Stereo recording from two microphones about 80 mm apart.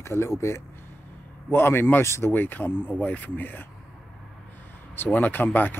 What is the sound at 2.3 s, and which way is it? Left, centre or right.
Speech, left.